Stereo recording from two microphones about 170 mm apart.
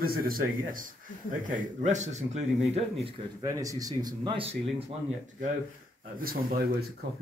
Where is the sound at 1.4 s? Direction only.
45° right (ahead or behind).